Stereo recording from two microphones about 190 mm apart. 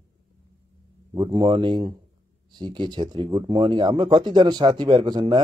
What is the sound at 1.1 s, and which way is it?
Speech, 25° right (ahead or behind).